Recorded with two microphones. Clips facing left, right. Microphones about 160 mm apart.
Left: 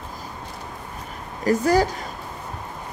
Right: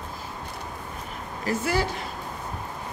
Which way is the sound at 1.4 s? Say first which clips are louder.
Left 7 dB; 40° left (ahead or behind).